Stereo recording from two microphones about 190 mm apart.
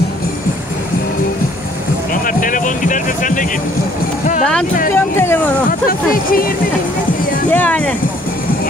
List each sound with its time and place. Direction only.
2.2 s music: 45° left (ahead or behind)
4.9 s speech: 10° left (ahead or behind)
5.7 s speech: 50° left (ahead or behind)
7.5 s speech: 5° left (ahead or behind)